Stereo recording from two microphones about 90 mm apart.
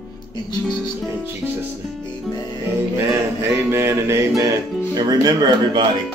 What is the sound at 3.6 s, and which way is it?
Music, 30° right (ahead or behind).